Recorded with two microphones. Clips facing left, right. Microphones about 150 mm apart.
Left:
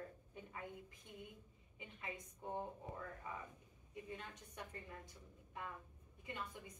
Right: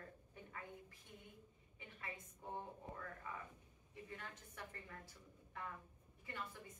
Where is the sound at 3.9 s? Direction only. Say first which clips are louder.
Left 3 dB; 20° left (ahead or behind).